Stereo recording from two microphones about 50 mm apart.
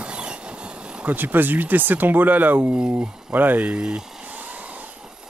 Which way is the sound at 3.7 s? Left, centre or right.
Centre.